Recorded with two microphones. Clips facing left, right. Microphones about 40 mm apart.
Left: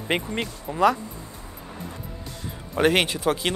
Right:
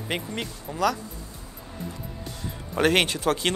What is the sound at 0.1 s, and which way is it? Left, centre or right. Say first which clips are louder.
Speech: left 5 dB; centre.